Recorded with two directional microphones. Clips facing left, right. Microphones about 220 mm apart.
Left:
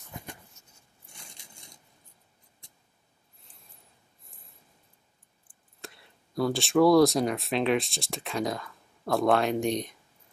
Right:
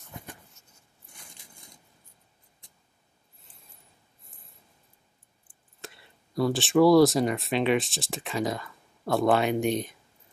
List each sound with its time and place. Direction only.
0.1 s writing: 15° left (ahead or behind)
4.2 s a sound: centre (ahead or behind)
5.5 s speech: centre (ahead or behind)